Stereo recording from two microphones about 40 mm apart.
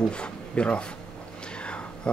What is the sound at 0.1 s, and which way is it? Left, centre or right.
Speech, left.